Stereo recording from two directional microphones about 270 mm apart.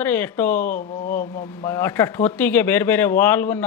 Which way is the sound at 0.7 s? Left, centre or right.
Left.